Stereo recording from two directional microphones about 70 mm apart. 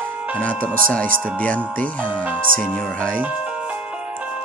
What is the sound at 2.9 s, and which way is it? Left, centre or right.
Speech, centre.